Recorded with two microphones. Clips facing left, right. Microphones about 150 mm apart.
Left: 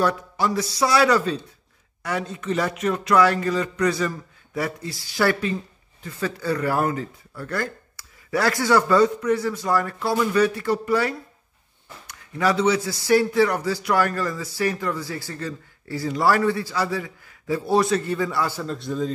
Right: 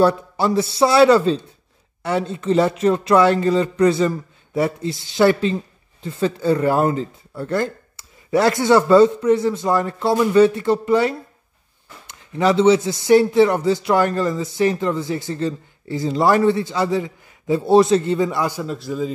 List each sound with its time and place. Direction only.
0.0 s a man's voice: 30° right (ahead or behind); by 19.1 s 5° right (ahead or behind)